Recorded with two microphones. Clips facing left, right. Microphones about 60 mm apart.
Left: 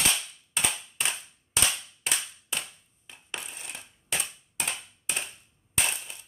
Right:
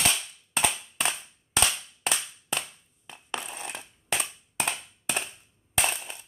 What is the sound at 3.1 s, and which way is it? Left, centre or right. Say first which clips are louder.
Crushing: right 5 dB; right.